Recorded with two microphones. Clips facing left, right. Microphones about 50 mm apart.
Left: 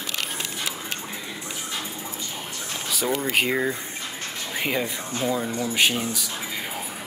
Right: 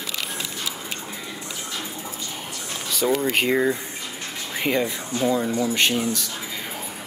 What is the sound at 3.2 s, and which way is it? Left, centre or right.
Speech, centre.